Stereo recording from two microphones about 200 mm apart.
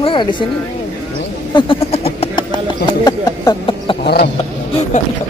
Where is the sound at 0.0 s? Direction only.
25° left (ahead or behind).